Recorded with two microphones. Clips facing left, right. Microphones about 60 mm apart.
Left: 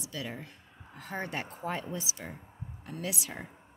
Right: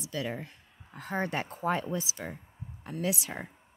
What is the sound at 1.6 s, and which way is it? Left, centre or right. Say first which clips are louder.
Speech: right 7 dB; right.